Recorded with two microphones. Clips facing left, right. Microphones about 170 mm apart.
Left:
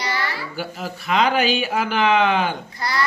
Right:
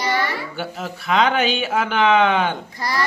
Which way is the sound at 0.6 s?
5° left (ahead or behind).